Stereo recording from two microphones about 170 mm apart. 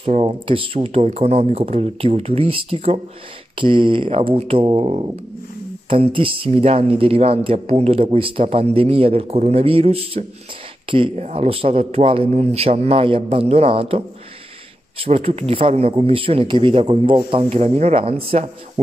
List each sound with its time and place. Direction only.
0.0 s speech: 35° right (ahead or behind)